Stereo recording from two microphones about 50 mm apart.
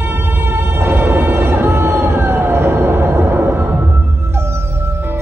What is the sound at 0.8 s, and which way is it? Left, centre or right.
Music, right.